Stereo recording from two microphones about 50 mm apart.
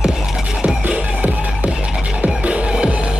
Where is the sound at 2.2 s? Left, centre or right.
Right.